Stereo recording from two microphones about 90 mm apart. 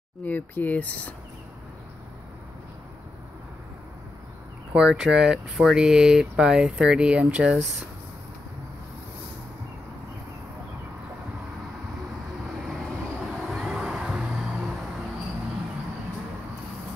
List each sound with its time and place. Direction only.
0.2 s speech: 20° left (ahead or behind)
4.7 s speech: 5° right (ahead or behind)
13.4 s music: 5° right (ahead or behind)